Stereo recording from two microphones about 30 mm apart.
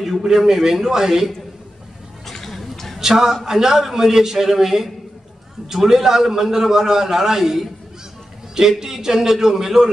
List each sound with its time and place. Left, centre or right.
0.0 s a man's voice: centre
2.2 s a sound: centre
3.0 s a man's voice: centre